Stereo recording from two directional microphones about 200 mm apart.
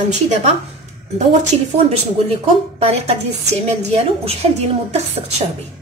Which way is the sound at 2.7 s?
30° right (ahead or behind).